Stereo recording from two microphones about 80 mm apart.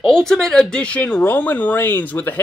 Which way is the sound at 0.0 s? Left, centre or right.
Centre.